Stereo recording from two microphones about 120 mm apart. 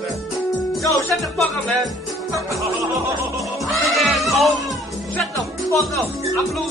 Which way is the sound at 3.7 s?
Centre (ahead or behind).